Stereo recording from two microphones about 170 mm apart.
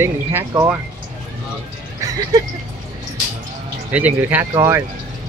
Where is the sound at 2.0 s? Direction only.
20° right (ahead or behind).